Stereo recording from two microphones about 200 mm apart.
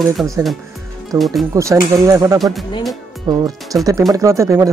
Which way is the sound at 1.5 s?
15° right (ahead or behind).